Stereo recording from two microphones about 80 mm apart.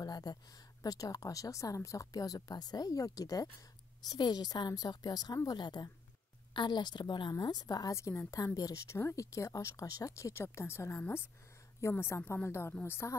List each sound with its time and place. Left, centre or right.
0.0 s a sound: left
0.8 s a woman's voice: left
7.3 s speech: left
7.9 s speech: left